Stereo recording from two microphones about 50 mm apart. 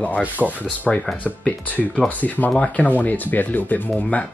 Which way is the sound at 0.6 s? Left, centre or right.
Left.